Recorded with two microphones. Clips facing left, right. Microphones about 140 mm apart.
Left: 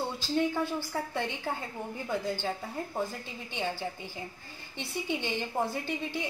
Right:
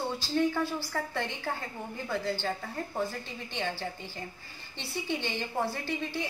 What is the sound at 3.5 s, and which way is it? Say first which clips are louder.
A woman's voice: left 1 dB; 10° left (ahead or behind).